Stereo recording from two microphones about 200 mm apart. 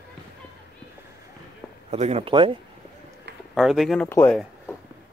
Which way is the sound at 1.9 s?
30° right (ahead or behind).